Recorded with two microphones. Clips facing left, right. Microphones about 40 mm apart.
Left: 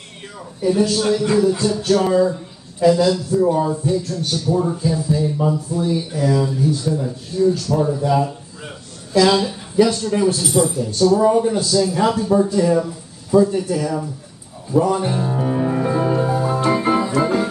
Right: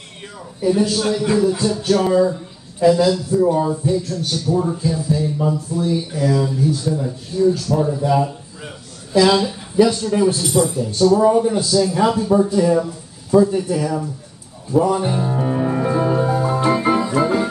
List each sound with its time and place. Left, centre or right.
0.6 s a man's voice: centre
14.7 s music: centre
17.2 s organ: centre